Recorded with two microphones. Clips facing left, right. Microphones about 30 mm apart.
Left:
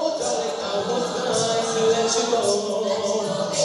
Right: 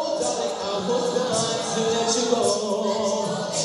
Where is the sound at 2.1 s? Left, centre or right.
Centre.